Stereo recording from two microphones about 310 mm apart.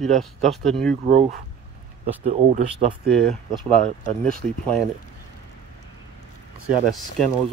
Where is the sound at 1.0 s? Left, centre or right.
Right.